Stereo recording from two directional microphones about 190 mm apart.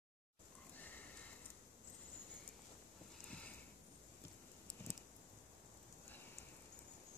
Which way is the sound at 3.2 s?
5° left (ahead or behind).